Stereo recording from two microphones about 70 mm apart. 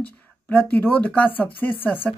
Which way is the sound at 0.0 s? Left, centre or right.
Left.